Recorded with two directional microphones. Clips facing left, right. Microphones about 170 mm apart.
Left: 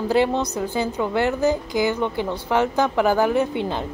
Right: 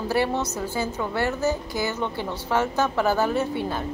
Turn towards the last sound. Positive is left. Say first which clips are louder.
# left 3 dB
turn(degrees=20)  # may be behind; listen again after turning